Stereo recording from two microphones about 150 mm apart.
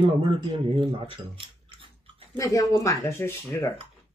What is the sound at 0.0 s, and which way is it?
Speech, 35° right (ahead or behind).